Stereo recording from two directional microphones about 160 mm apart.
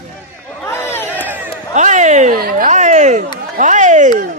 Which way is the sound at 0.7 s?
15° left (ahead or behind).